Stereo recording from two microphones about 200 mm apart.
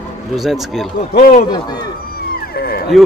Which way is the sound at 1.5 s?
20° left (ahead or behind).